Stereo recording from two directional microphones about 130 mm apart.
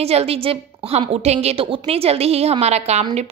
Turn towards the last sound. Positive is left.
turn(degrees=-55)  # may be behind; listen again after turning